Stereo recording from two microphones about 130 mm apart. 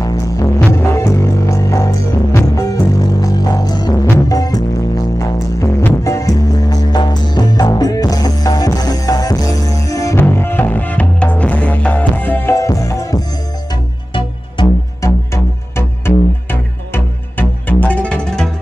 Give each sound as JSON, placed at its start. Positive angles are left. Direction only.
{"t": 0.0, "sound": "music", "side_deg": 25}
{"t": 6.0, "sound": "music", "side_deg": 25}
{"t": 15.0, "sound": "music", "side_deg": 25}